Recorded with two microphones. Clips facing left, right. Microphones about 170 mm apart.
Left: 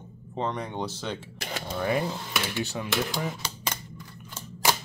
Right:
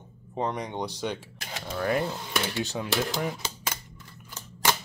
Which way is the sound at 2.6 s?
15° right (ahead or behind).